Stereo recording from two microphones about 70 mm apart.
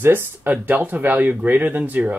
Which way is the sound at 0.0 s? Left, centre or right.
Right.